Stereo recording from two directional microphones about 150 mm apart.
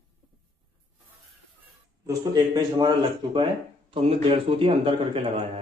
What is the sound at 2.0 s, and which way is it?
Speech, 25° right (ahead or behind).